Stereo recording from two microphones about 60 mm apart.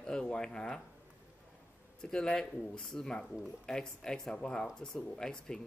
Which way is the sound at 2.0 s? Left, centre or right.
Centre.